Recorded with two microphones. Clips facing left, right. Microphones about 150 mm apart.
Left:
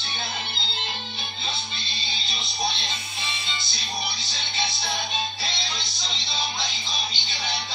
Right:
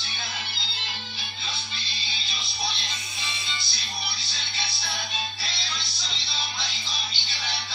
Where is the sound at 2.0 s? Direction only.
25° left (ahead or behind).